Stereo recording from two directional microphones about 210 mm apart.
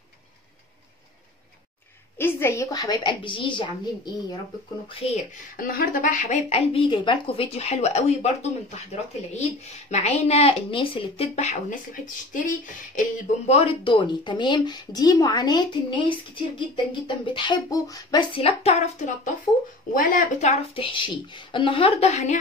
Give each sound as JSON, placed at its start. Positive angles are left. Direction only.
{"t": 2.1, "sound": "speech", "side_deg": 10}
{"t": 5.6, "sound": "speech", "side_deg": 40}
{"t": 13.5, "sound": "speech", "side_deg": 30}